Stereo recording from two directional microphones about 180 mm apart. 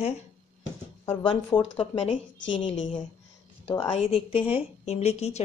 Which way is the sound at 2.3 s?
90° left.